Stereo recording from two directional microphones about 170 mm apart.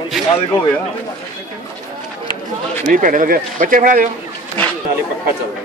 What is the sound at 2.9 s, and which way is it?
Speech, 50° right (ahead or behind).